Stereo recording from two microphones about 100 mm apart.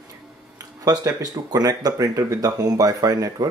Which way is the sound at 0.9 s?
40° right (ahead or behind).